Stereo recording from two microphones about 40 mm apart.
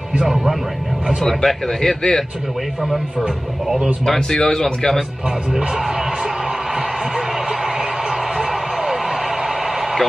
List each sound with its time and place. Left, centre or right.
0.2 s speech: centre
1.0 s a man's voice: centre
2.9 s speech: centre
4.0 s a man's voice: centre